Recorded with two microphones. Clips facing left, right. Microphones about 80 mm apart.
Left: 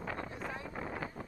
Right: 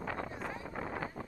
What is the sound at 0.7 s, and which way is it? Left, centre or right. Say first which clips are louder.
Vehicle: right 1 dB; right.